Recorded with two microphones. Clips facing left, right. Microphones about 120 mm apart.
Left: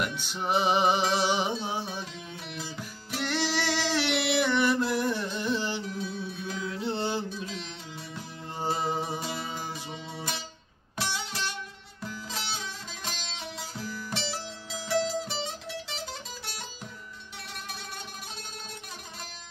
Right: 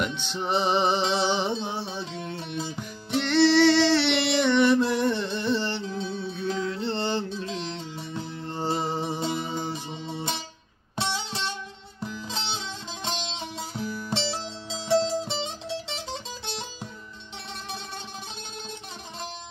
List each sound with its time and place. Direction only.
0.0 s music: 10° left (ahead or behind)
2.5 s music: 25° right (ahead or behind)
3.2 s music: 10° left (ahead or behind)
5.9 s music: 25° right (ahead or behind)
6.3 s music: 10° left (ahead or behind)
9.1 s music: 25° right (ahead or behind)